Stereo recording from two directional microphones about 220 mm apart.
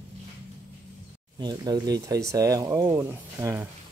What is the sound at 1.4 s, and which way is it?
Speech, 20° right (ahead or behind).